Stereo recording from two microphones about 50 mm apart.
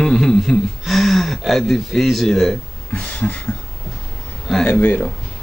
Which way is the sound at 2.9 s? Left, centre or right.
Left.